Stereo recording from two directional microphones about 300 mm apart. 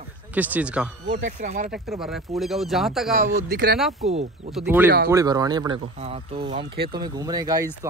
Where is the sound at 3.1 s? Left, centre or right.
Right.